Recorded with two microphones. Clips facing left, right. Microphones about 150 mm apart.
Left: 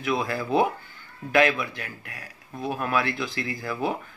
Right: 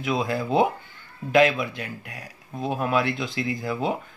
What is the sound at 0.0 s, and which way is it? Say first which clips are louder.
Speech: right 1 dB; 20° right (ahead or behind).